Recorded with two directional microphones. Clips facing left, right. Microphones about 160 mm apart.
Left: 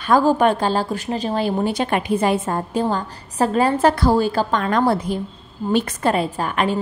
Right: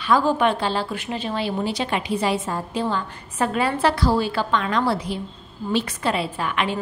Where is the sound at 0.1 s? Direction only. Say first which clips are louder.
Left 4 dB; 40° left (ahead or behind).